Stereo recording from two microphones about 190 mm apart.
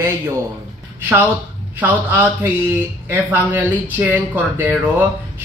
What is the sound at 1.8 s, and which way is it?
Speech, 10° right (ahead or behind).